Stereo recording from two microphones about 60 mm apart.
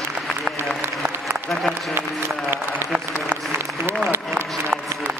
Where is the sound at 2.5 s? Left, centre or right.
Right.